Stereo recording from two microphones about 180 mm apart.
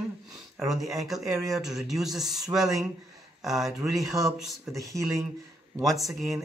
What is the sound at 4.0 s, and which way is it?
Speech, 20° right (ahead or behind).